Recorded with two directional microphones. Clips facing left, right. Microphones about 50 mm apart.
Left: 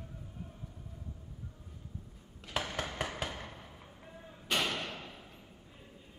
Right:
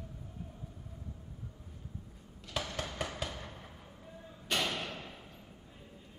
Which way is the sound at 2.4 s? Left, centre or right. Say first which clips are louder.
Left 2 dB; left.